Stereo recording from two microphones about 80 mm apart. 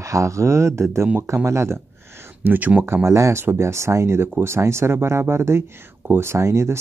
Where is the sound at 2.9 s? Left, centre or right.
Right.